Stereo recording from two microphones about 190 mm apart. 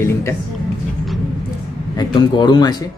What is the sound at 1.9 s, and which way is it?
Speech, 20° left (ahead or behind).